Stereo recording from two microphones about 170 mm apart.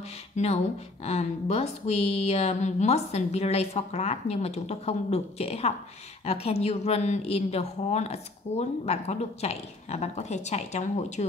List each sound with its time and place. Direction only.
1.0 s speech: 40° left (ahead or behind)